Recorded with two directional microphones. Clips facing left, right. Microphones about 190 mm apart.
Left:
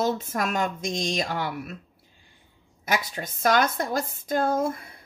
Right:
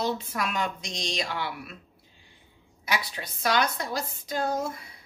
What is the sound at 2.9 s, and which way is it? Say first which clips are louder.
A woman's voice: left 4 dB; 45° left (ahead or behind).